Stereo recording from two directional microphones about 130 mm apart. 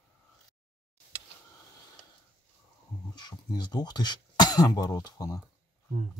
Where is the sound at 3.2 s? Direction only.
30° left (ahead or behind).